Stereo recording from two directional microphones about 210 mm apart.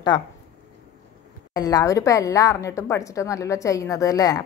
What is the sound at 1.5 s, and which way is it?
A woman's voice, 15° left (ahead or behind).